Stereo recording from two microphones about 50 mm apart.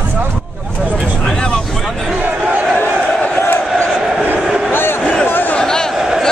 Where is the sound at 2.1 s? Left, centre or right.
Right.